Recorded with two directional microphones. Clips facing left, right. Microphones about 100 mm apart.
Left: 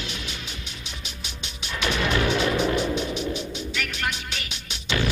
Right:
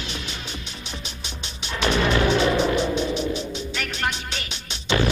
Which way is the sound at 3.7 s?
35° right (ahead or behind).